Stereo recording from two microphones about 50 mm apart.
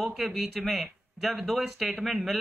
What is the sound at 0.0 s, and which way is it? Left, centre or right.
Speech, centre.